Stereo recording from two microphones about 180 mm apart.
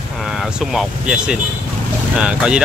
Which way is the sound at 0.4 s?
Centre (ahead or behind).